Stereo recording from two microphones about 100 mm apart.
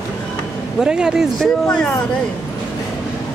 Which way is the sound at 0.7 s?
5° right (ahead or behind).